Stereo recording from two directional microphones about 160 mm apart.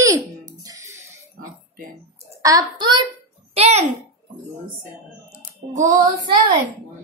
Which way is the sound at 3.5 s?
40° right (ahead or behind).